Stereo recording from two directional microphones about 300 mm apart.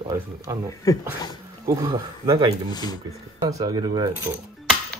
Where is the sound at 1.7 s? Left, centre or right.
Centre.